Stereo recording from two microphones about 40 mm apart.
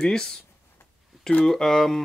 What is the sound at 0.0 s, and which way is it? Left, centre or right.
Speech, centre.